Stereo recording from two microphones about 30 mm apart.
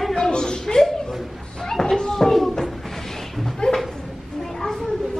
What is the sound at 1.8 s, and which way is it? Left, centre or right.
Children playing, centre.